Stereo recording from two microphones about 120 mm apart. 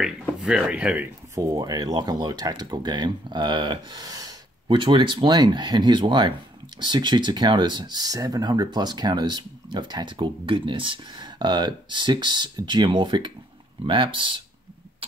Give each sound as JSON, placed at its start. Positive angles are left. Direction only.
{"t": 0.0, "sound": "speech", "side_deg": -5}
{"t": 1.3, "sound": "speech", "side_deg": -30}